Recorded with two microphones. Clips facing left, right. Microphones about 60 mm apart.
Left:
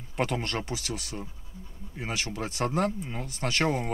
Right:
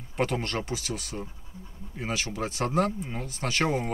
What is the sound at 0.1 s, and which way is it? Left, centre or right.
Speech, centre.